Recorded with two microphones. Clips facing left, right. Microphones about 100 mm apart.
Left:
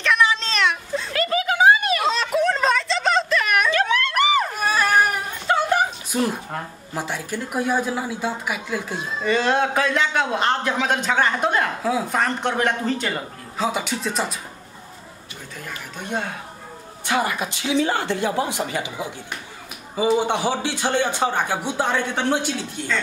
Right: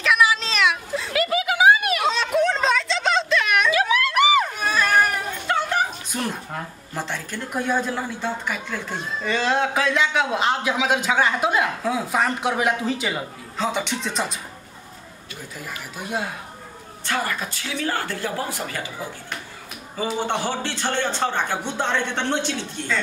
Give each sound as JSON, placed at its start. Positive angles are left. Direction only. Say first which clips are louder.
{"t": 0.0, "sound": "a sound", "louder": "even", "side_deg": -5}
{"t": 6.1, "sound": "speech", "louder": "left 5 dB", "side_deg": 5}
{"t": 16.0, "sound": "speech", "louder": "left 1 dB", "side_deg": -5}
{"t": 17.0, "sound": "speech", "louder": "left 3 dB", "side_deg": 15}
{"t": 20.2, "sound": "speech", "louder": "left 3 dB", "side_deg": 10}